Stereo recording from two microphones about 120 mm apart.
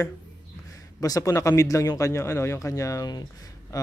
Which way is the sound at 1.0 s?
30° left (ahead or behind).